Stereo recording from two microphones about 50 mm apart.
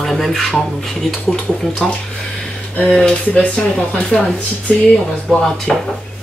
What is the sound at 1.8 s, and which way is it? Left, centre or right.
Speech, centre.